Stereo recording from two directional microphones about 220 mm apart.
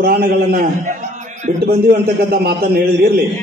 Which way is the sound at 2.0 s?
45° right (ahead or behind).